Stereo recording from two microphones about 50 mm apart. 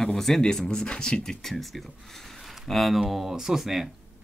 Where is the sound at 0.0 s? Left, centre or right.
Centre.